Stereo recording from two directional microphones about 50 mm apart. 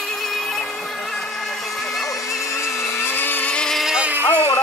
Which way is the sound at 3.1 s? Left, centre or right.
Left.